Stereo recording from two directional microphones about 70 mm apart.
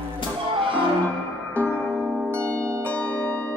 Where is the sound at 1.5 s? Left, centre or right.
Centre.